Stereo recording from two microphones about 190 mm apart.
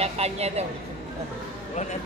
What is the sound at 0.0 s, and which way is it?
Speech, 35° right (ahead or behind).